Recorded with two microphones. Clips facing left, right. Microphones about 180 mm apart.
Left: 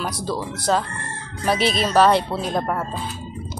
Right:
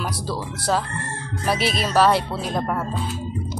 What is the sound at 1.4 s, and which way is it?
Speech, 5° right (ahead or behind).